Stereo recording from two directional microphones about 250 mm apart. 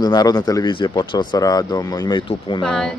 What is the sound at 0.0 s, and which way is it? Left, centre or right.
Speech, centre.